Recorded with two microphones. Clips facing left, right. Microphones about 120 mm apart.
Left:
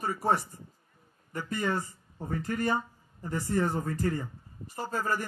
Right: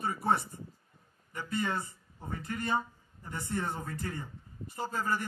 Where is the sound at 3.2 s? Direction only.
40° left (ahead or behind).